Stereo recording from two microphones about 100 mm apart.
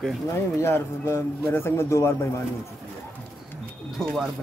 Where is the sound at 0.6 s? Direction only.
25° left (ahead or behind).